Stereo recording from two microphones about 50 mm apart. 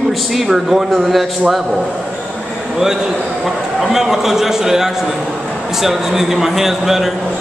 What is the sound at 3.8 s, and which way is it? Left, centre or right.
A man's voice, centre.